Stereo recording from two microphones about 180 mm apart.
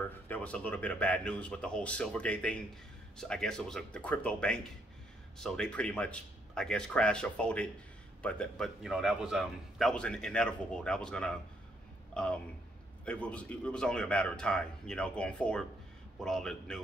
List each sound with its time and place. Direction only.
0.3 s a man's voice: 5° left (ahead or behind)